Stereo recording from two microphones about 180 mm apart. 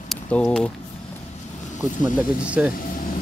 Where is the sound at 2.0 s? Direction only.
5° right (ahead or behind).